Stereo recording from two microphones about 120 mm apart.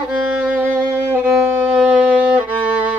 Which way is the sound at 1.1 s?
15° right (ahead or behind).